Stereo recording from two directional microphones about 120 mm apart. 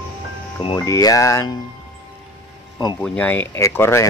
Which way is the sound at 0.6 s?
45° left (ahead or behind).